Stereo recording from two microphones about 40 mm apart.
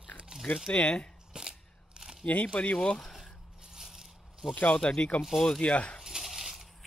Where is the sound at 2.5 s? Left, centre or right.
Left.